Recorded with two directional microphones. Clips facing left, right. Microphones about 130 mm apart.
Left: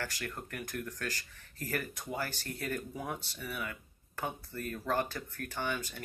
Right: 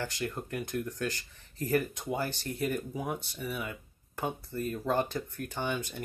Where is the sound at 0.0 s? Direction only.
20° right (ahead or behind).